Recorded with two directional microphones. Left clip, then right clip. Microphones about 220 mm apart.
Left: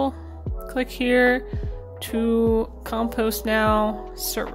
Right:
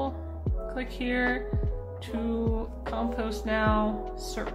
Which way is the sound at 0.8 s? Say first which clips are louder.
Left 11 dB; 55° left (ahead or behind).